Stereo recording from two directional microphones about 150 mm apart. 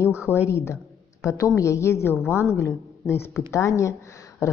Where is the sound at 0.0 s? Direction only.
15° left (ahead or behind).